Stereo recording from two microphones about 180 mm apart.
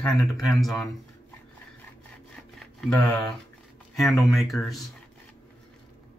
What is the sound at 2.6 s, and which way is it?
Speech, 5° left (ahead or behind).